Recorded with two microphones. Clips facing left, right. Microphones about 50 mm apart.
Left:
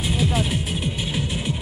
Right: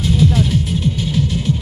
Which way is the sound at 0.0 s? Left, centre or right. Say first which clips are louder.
Right 7 dB; centre.